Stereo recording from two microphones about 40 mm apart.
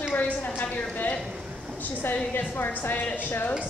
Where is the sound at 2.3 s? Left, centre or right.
Left.